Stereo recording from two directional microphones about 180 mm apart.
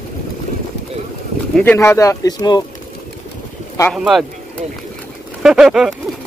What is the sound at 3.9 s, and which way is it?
Speech, centre (ahead or behind).